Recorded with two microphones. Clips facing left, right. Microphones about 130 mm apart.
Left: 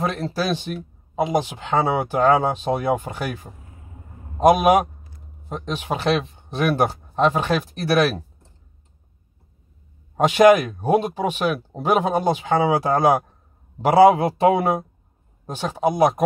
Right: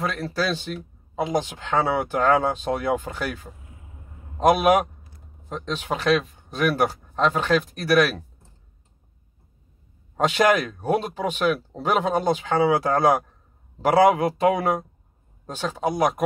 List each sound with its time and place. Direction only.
0.0 s speech: 25° left (ahead or behind)
0.4 s speech: 15° left (ahead or behind)
5.9 s speech: 30° left (ahead or behind)
7.2 s speech: 15° left (ahead or behind)
7.7 s speech: 25° left (ahead or behind)
10.1 s a man's voice: 15° left (ahead or behind)
14.0 s speech: 30° left (ahead or behind)
15.4 s speech: 15° left (ahead or behind)